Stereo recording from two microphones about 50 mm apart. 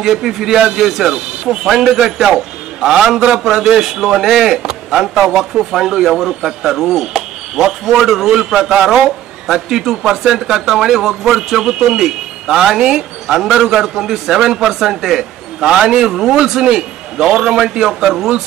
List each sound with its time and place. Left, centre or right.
0.0 s a man's voice: centre